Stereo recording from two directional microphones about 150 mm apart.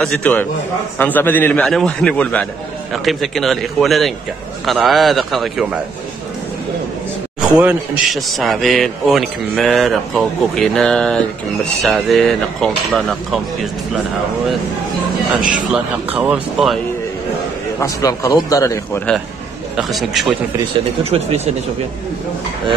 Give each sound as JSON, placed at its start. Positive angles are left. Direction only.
{"t": 0.0, "sound": "a man's voice", "side_deg": 10}
{"t": 7.5, "sound": "a man's voice", "side_deg": -5}
{"t": 15.7, "sound": "speech", "side_deg": -10}
{"t": 17.7, "sound": "a man's voice", "side_deg": 20}
{"t": 19.8, "sound": "a man's voice", "side_deg": 0}
{"t": 21.0, "sound": "speech", "side_deg": -45}